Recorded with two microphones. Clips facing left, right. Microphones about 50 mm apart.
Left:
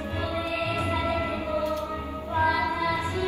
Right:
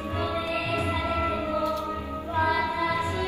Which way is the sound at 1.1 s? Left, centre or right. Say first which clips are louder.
Right 1 dB; right.